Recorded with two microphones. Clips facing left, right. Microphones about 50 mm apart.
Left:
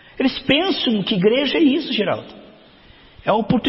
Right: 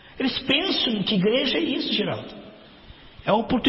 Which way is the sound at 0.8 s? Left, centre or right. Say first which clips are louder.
Left 5 dB; left.